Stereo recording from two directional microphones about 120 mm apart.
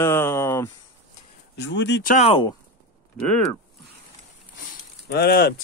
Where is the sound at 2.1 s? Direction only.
50° left (ahead or behind).